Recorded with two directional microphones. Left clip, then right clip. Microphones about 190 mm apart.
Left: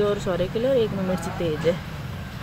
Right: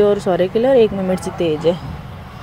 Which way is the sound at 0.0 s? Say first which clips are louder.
Right 9 dB; 25° right (ahead or behind).